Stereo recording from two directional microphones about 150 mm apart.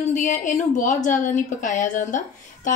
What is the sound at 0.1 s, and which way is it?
A woman's voice, 55° left (ahead or behind).